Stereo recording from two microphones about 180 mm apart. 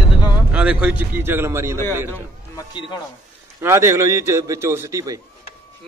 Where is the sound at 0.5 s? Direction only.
5° right (ahead or behind).